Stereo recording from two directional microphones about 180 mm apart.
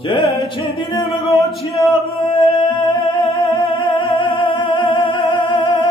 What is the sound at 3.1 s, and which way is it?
Music, 30° left (ahead or behind).